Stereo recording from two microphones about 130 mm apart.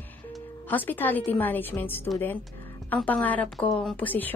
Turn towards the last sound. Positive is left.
turn(degrees=15)  # may be behind; listen again after turning